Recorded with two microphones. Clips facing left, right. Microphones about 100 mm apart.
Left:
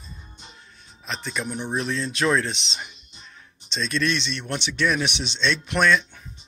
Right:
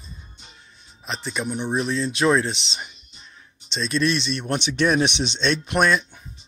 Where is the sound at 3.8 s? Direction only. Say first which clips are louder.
Right 3 dB; 30° right (ahead or behind).